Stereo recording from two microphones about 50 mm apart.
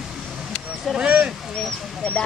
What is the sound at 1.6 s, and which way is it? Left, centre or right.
Speech, centre.